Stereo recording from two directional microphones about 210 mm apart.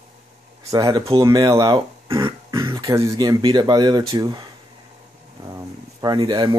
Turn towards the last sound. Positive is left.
turn(degrees=-20)  # may be behind; listen again after turning